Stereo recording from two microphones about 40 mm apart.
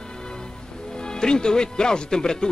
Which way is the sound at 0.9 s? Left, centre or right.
Centre.